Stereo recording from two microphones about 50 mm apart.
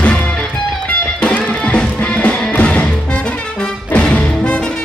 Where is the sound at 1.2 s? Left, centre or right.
Left.